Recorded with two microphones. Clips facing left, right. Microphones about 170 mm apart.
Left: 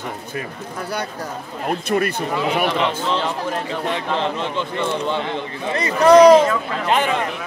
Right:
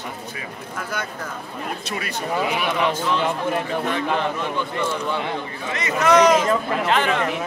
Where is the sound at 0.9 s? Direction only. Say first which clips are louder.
Left 4 dB; 35° left (ahead or behind).